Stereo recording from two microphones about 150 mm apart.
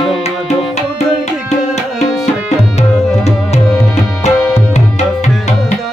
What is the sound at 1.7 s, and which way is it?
Tabla, 50° left (ahead or behind).